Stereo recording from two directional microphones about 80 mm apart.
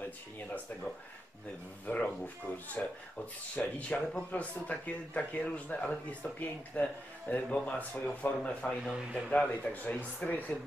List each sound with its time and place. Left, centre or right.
1.9 s speech: centre
8.8 s a man's voice: centre
9.3 s speech: centre